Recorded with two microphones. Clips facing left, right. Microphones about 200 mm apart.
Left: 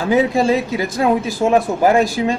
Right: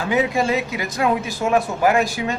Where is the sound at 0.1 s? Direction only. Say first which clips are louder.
Left 5 dB; 30° left (ahead or behind).